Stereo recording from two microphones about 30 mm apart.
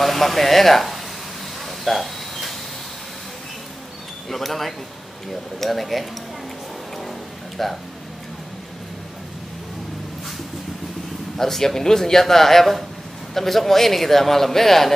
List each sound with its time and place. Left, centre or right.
0.0 s speech: centre
1.9 s a sound: centre
4.3 s speech: centre
7.1 s music: centre
11.3 s speech: centre